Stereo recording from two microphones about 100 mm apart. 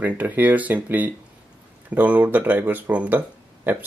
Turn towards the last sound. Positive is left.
turn(degrees=-20)  # may be behind; listen again after turning